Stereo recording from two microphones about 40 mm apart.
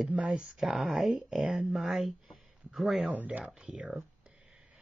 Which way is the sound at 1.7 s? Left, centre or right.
Centre.